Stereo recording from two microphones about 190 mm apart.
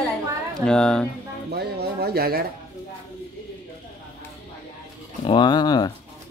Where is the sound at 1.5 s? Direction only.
55° right (ahead or behind).